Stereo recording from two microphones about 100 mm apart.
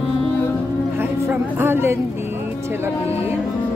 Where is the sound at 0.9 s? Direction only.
20° right (ahead or behind).